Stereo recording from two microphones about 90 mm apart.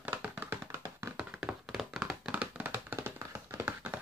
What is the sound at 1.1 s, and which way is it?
Tap, 10° right (ahead or behind).